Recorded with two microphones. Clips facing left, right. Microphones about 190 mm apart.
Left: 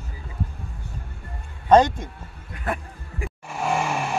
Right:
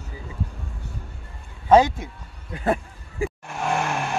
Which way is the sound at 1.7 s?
5° right (ahead or behind).